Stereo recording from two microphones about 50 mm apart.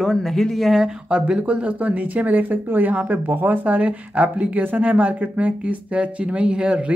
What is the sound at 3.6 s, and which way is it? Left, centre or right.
Speech, right.